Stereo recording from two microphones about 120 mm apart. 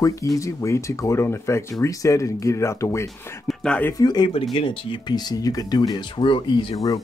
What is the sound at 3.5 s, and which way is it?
Speech, 5° left (ahead or behind).